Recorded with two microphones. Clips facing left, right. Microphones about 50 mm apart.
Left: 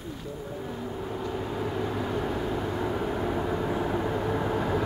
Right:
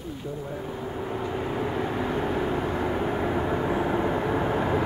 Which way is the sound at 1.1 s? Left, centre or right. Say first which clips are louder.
Right 3 dB; right.